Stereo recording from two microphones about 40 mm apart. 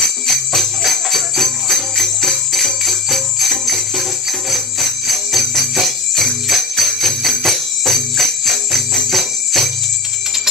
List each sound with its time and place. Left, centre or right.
0.0 s jingle bell: centre